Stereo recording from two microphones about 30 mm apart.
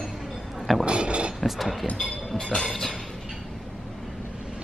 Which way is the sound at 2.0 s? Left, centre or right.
Left.